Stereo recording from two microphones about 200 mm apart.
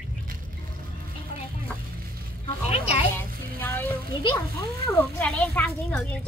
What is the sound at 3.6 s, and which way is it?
Speech, 10° left (ahead or behind).